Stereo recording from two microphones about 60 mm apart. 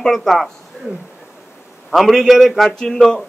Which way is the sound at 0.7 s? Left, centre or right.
Centre.